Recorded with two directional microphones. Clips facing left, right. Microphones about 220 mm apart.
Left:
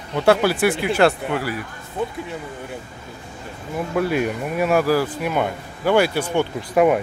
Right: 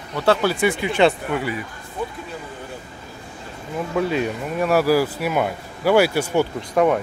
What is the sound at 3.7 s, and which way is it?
Speech, 10° left (ahead or behind).